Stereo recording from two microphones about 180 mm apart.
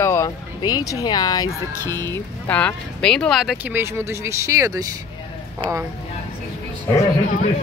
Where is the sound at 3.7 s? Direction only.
15° right (ahead or behind).